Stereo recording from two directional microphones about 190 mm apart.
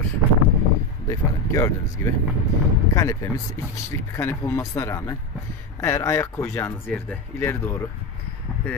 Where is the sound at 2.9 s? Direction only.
20° left (ahead or behind).